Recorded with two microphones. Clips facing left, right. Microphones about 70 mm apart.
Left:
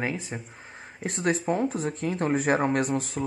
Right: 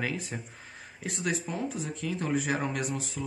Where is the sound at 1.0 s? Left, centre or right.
Left.